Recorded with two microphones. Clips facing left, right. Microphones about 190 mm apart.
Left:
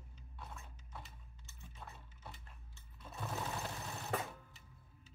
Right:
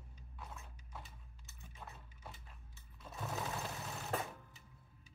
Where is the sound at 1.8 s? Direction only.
5° right (ahead or behind).